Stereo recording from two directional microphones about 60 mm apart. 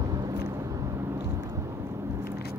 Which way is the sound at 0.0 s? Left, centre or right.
Right.